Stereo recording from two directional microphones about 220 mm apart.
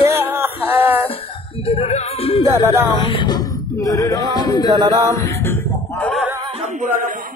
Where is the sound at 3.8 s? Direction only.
15° left (ahead or behind).